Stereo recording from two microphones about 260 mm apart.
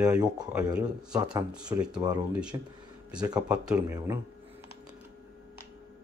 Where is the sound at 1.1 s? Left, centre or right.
Centre.